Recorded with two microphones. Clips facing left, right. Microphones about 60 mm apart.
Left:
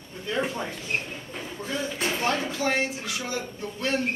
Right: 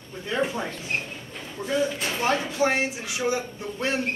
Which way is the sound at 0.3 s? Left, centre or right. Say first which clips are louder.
Right 2 dB; centre.